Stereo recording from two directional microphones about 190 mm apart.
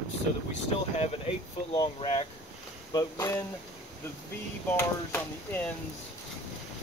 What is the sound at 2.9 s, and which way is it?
Speech, 15° left (ahead or behind).